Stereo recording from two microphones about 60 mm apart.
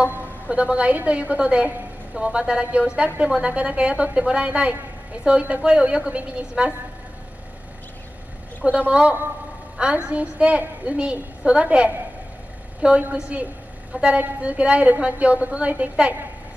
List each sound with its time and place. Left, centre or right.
0.5 s a woman's voice: right
8.6 s a woman's voice: right
13.1 s a woman's voice: right